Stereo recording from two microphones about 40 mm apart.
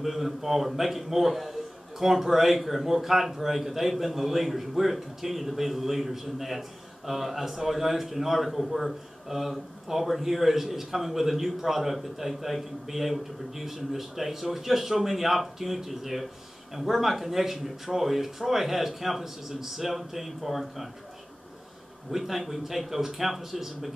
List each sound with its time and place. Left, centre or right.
0.0 s a man's voice: centre
22.1 s a man's voice: centre